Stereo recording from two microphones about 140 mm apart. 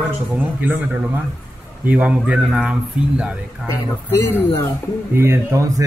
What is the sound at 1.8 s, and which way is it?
A man's voice, 10° right (ahead or behind).